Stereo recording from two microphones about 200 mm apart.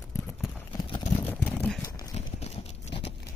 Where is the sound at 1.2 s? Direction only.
10° left (ahead or behind).